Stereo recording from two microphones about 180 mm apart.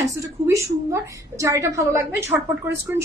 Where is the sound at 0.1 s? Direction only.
15° right (ahead or behind).